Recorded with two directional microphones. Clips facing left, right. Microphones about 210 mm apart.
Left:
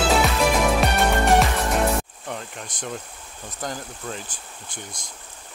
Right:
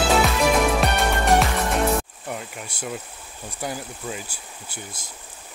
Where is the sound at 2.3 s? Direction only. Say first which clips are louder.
Right 1 dB; 10° right (ahead or behind).